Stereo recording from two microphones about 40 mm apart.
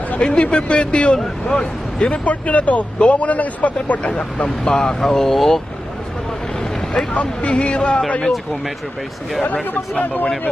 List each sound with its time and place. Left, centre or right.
0.2 s speech: left
1.5 s speech: centre
2.2 s speech: left
4.0 s speech: left; by 5.6 s centre
7.2 s speech: left